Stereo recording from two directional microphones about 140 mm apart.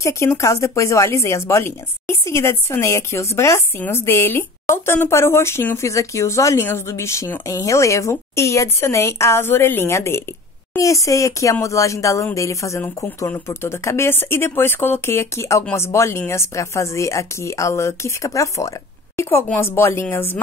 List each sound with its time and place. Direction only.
0.0 s speech: 20° left (ahead or behind)